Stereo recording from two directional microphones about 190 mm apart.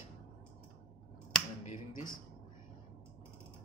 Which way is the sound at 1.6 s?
40° left (ahead or behind).